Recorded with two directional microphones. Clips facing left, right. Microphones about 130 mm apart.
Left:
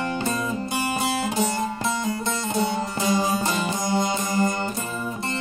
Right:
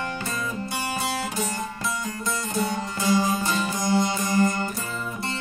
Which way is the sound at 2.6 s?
25° left (ahead or behind).